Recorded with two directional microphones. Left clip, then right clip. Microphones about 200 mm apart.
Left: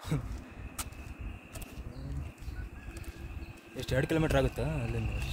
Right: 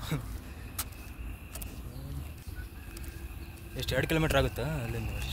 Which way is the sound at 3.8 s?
25° left (ahead or behind).